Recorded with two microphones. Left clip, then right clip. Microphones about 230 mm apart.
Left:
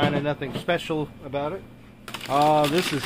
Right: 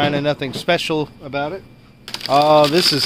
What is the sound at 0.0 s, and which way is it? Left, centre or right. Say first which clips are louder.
Speech: right 6 dB; right.